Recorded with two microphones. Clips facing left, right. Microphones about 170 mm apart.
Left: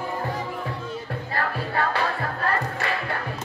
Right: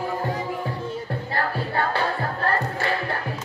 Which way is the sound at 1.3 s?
30° right (ahead or behind).